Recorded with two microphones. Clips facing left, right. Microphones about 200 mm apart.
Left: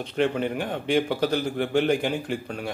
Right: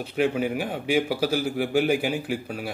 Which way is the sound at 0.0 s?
5° right (ahead or behind).